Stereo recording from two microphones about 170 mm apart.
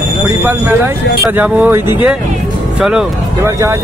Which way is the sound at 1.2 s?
10° right (ahead or behind).